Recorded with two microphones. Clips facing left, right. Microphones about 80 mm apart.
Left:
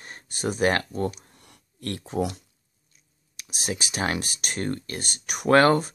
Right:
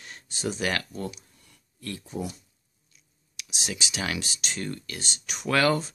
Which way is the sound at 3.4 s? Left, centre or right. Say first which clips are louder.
Left 3 dB; left.